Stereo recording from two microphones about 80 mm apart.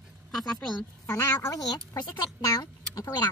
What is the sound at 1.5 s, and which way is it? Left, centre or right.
Speech, left.